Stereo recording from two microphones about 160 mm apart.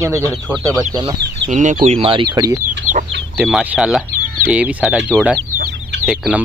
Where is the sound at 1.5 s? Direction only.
55° right (ahead or behind).